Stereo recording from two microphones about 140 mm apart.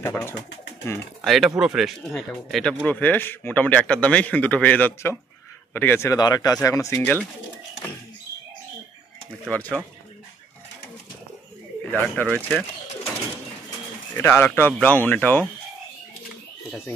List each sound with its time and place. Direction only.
0.0 s speech: 15° left (ahead or behind)
1.2 s speech: centre (ahead or behind); by 6.1 s 15° left (ahead or behind)
6.1 s speech: 30° left (ahead or behind); by 7.2 s 15° left (ahead or behind)
9.5 s speech: 10° left (ahead or behind)
11.8 s speech: 10° left (ahead or behind)
14.1 s speech: 15° left (ahead or behind)